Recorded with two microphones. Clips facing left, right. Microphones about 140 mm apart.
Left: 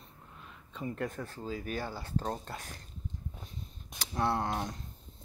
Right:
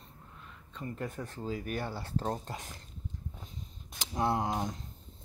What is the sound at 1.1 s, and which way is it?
Speech, 20° right (ahead or behind).